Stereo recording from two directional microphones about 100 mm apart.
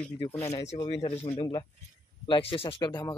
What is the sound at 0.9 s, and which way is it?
Speech, 85° left.